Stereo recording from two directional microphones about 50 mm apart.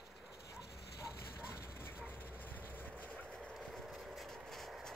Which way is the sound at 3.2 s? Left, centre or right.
Centre.